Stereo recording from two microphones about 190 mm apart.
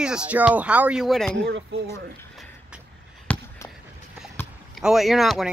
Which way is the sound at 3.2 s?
15° left (ahead or behind).